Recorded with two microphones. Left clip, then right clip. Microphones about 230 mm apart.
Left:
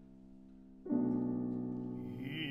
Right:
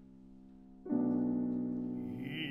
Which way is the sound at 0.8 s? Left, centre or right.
Centre.